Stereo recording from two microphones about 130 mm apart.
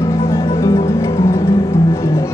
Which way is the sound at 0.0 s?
20° left (ahead or behind).